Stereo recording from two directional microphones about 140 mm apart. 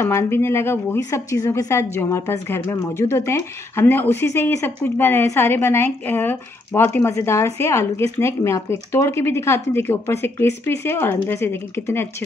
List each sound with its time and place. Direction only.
0.0 s a woman's voice: 15° left (ahead or behind)